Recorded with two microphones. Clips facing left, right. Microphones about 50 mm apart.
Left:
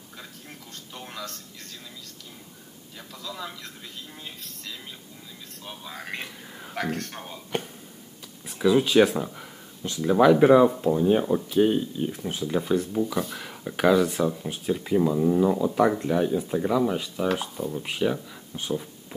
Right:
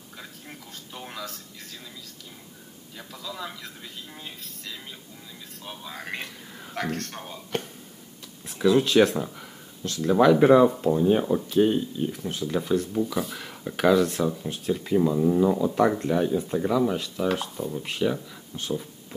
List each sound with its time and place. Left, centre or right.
0.2 s a man's voice: centre